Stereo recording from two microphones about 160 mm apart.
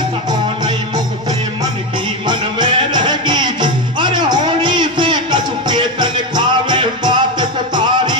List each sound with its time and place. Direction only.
0.3 s music: 25° right (ahead or behind)
2.2 s music: 30° right (ahead or behind)